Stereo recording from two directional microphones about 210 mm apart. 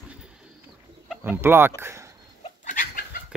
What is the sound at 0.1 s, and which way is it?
Pigeon, 5° right (ahead or behind).